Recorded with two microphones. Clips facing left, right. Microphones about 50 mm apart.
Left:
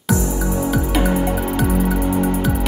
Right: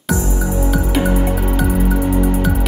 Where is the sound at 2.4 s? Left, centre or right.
Centre.